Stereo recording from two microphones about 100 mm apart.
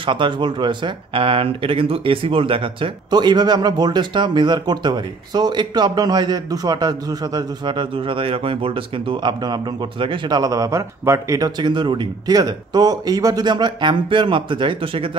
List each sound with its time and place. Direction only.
0.0 s speech: 55° right (ahead or behind)